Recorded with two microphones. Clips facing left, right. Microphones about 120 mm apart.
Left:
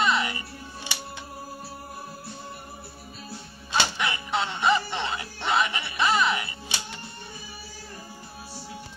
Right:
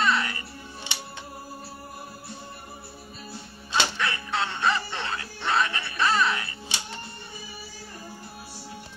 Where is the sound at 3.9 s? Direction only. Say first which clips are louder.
Left 1 dB; 15° left (ahead or behind).